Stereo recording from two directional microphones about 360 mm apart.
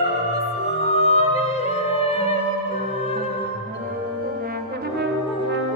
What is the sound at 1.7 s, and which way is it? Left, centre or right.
Music, centre.